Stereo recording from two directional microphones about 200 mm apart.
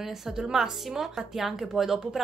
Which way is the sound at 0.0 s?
5° right (ahead or behind).